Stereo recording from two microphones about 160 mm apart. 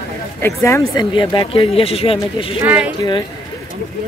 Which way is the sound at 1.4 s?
35° left (ahead or behind).